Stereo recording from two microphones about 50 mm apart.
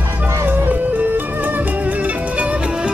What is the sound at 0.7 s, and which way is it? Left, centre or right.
Music, right.